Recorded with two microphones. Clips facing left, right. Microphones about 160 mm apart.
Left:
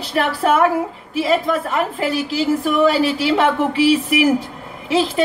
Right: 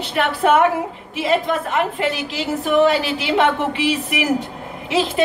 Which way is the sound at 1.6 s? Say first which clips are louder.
Even; 35° left (ahead or behind).